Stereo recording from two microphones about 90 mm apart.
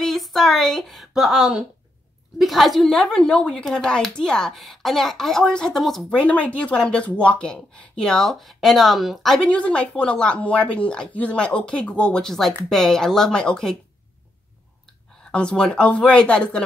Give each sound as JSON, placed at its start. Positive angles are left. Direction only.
{"t": 0.0, "sound": "speech", "side_deg": 5}
{"t": 6.1, "sound": "speech", "side_deg": 15}
{"t": 15.3, "sound": "speech", "side_deg": 10}